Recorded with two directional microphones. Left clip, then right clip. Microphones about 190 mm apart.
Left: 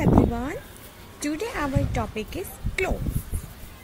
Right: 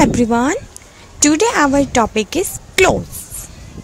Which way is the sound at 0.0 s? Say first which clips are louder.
Right 9 dB; 50° right (ahead or behind).